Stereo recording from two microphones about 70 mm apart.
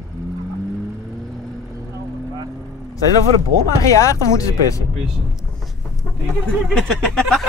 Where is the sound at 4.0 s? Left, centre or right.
Left.